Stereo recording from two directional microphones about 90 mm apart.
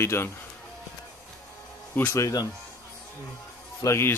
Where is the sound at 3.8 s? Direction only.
30° left (ahead or behind).